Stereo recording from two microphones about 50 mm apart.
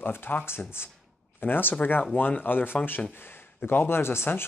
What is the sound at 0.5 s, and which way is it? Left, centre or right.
Speech, left.